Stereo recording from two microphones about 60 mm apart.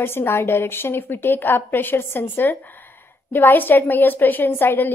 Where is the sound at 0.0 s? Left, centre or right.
Left.